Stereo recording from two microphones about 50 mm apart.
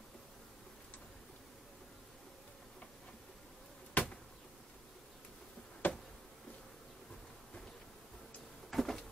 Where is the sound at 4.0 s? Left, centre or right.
Left.